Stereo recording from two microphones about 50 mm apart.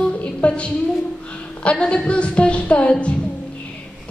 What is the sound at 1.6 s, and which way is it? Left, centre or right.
A woman's voice, left.